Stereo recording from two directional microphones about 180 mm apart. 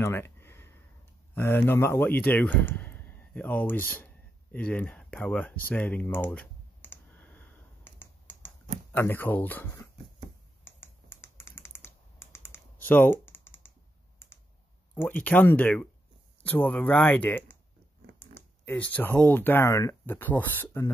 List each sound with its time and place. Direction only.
0.0 s a sound: 15° left (ahead or behind)
1.3 s speech: 10° left (ahead or behind)
4.0 s a sound: 10° left (ahead or behind)
8.9 s speech: 10° left (ahead or behind)
10.6 s computer keyboard: 15° left (ahead or behind)
15.0 s speech: 10° left (ahead or behind)